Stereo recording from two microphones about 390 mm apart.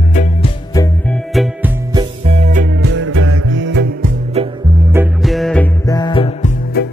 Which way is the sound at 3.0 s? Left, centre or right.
Right.